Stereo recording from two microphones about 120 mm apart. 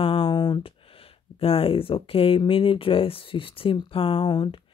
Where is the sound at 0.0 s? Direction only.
50° left (ahead or behind).